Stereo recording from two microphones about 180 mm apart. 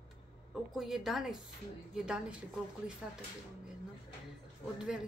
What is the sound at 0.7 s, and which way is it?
A woman's voice, centre (ahead or behind).